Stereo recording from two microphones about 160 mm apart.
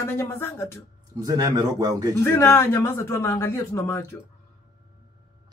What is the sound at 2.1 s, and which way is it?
Speech, 15° left (ahead or behind).